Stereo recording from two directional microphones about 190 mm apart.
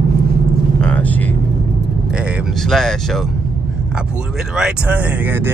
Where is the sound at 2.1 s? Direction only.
5° right (ahead or behind).